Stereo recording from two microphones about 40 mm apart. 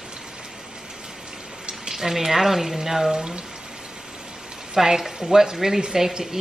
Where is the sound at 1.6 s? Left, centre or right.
Centre.